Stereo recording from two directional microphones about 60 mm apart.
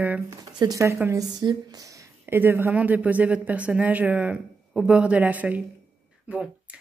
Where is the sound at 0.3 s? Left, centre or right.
Right.